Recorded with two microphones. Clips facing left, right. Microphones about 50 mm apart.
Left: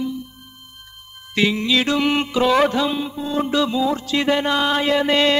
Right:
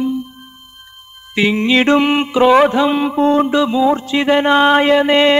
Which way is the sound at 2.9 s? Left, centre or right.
Right.